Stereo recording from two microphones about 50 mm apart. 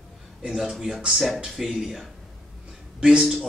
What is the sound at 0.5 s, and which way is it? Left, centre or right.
Speech, centre.